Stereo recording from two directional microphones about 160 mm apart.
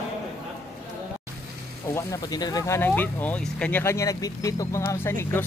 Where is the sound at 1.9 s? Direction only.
20° left (ahead or behind).